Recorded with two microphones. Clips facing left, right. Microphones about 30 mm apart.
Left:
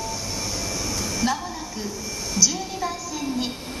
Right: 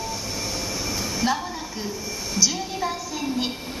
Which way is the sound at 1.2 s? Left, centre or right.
Centre.